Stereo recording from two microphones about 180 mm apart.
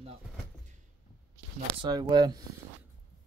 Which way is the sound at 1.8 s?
20° right (ahead or behind).